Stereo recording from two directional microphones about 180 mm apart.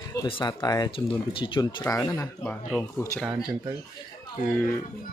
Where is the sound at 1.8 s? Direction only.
15° left (ahead or behind).